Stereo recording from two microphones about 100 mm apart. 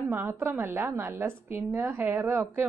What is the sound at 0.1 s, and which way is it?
A woman's voice, 25° right (ahead or behind).